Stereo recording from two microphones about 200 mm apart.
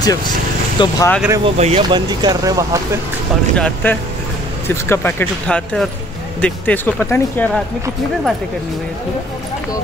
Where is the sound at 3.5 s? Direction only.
5° left (ahead or behind).